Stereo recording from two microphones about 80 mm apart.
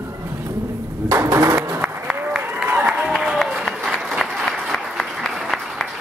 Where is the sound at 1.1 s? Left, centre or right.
Right.